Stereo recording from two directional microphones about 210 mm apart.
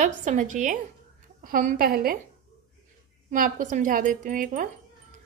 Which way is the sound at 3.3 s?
40° right (ahead or behind).